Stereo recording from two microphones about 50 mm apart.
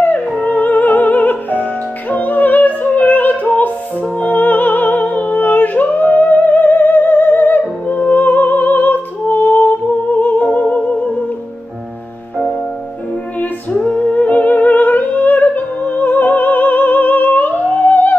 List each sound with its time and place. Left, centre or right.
0.0 s music: left
13.7 s music: left